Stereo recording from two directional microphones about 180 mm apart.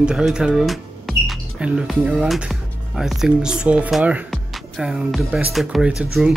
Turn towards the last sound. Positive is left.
turn(degrees=-5)  # may be behind; listen again after turning